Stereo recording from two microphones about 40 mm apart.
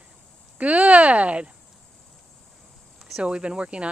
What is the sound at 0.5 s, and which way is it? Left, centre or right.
Speech, right.